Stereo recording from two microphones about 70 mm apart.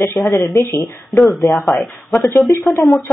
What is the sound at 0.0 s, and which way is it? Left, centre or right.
Speech, left.